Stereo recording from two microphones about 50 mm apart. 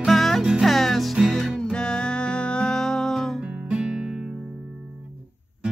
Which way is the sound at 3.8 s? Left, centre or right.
Centre.